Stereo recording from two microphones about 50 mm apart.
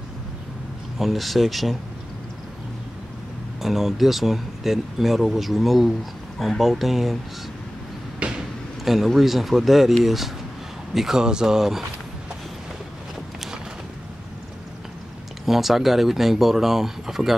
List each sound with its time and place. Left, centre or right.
0.9 s speech: centre
3.6 s speech: centre
8.2 s a sound: right
8.8 s speech: centre
15.4 s speech: centre